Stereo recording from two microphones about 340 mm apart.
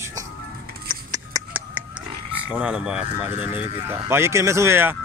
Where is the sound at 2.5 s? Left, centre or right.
Centre.